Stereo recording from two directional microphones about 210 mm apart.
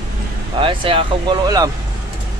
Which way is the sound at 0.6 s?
25° right (ahead or behind).